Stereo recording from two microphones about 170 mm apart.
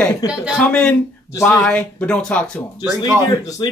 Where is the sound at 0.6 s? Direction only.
5° left (ahead or behind).